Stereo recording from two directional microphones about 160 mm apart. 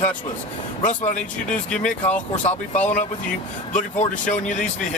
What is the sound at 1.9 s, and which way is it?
Speech, 10° left (ahead or behind).